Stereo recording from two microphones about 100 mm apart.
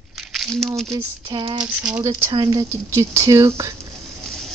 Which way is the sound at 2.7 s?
30° right (ahead or behind).